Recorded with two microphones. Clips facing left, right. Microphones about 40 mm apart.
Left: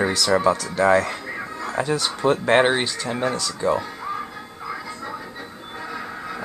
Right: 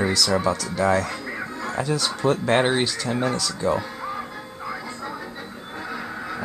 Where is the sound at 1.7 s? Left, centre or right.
Centre.